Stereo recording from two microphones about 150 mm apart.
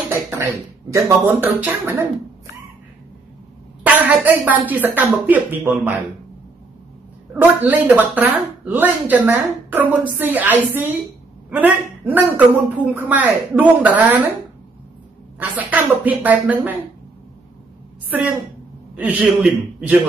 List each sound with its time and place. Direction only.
0.1 s speech: 20° right (ahead or behind)
3.8 s speech: 10° right (ahead or behind)
7.3 s speech: 10° right (ahead or behind)
15.3 s speech: 10° right (ahead or behind)
18.9 s speech: 10° right (ahead or behind)